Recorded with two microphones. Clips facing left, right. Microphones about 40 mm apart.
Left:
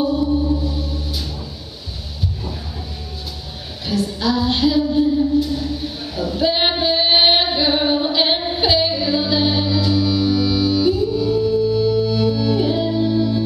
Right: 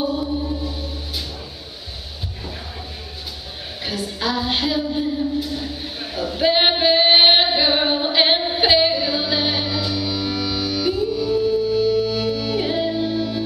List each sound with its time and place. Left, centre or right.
0.0 s music: centre
3.8 s a sound: right
10.9 s music: centre